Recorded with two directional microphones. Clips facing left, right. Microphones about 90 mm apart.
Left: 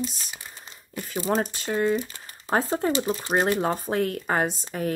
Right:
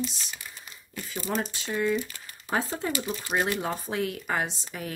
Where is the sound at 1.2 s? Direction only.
45° left (ahead or behind).